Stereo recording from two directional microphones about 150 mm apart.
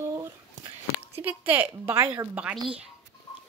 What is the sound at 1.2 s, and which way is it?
A woman's voice, 10° right (ahead or behind).